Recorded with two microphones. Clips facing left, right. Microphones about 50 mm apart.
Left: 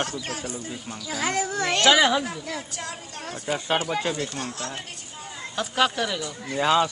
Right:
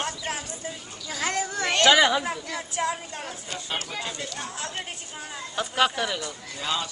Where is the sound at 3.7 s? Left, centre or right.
Centre.